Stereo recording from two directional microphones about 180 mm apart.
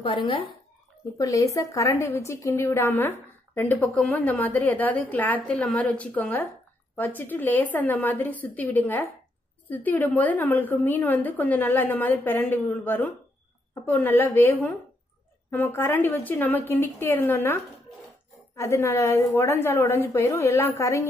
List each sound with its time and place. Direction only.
0.0 s a woman's voice: 30° left (ahead or behind)